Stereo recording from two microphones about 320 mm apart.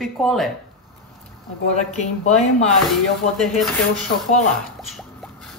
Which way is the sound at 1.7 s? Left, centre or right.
Left.